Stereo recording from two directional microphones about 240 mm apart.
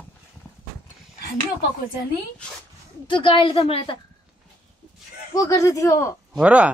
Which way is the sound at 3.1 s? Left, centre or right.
Left.